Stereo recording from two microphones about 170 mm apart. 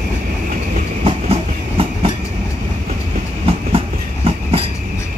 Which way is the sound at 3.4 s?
35° right (ahead or behind).